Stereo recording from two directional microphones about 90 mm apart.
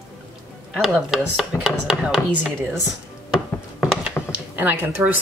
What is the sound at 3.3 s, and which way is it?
Mechanisms, 10° right (ahead or behind).